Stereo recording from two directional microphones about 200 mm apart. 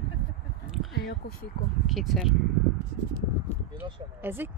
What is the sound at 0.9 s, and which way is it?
Speech, 50° left (ahead or behind).